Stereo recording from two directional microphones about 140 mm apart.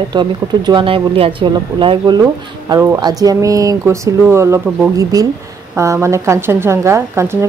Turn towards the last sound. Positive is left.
turn(degrees=-20)  # may be behind; listen again after turning